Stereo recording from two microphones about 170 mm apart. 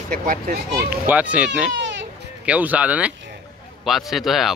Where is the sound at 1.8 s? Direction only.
90° right.